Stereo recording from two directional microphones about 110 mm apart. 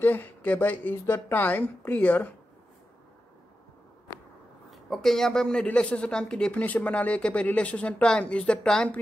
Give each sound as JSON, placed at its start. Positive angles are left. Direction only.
{"t": 0.0, "sound": "speech", "side_deg": 15}
{"t": 4.6, "sound": "speech", "side_deg": 0}